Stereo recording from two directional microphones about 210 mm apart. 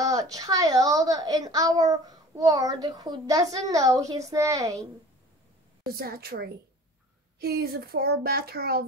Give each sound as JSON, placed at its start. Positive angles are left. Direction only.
{"t": 0.0, "sound": "a woman's voice", "side_deg": -15}
{"t": 5.9, "sound": "a child's voice", "side_deg": -45}